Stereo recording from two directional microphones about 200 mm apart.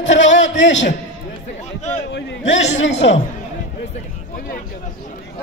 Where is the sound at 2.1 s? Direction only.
65° left (ahead or behind).